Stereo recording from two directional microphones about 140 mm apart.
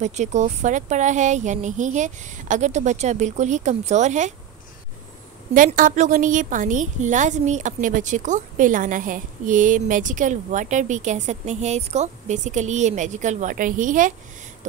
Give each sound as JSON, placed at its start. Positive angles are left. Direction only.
{"t": 0.0, "sound": "a woman's voice", "side_deg": -55}
{"t": 5.5, "sound": "a woman's voice", "side_deg": -70}